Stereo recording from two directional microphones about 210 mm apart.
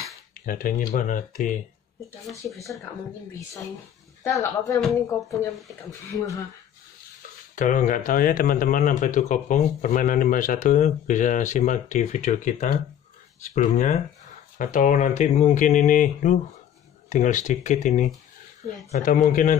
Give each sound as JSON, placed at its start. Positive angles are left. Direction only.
{"t": 0.5, "sound": "speech", "side_deg": 40}
{"t": 4.2, "sound": "speech", "side_deg": 15}
{"t": 7.5, "sound": "speech", "side_deg": 40}